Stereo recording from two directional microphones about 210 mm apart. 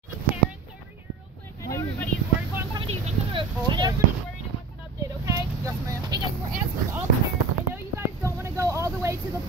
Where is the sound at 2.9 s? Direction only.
25° right (ahead or behind).